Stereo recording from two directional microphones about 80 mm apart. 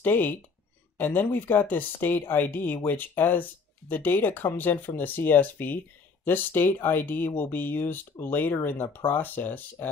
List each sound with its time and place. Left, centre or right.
0.0 s speech: left